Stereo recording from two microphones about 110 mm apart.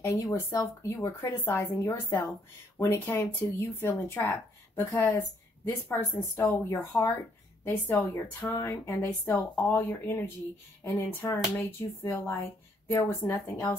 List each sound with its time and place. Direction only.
0.0 s a woman's voice: 25° left (ahead or behind)